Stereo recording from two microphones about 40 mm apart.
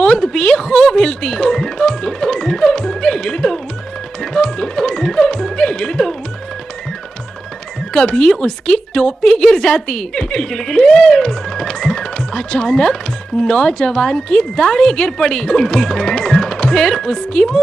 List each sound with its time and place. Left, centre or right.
0.0 s speech: centre
7.9 s a woman's voice: centre
11.1 s music: centre
11.5 s a woman's voice: centre